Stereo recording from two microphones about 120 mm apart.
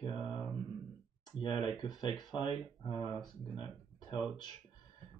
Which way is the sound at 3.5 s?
40° left (ahead or behind).